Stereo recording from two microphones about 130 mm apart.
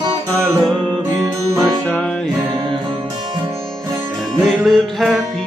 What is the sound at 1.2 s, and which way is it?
Music, 25° right (ahead or behind).